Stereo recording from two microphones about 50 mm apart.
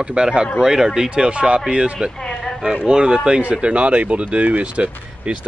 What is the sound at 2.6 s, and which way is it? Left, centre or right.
Speech, centre.